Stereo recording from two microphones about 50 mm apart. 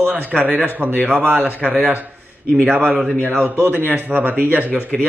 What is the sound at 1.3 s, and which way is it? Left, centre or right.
Speech, right.